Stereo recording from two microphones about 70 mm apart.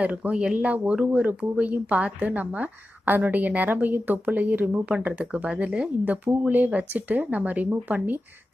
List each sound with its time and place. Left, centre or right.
0.0 s a woman's voice: right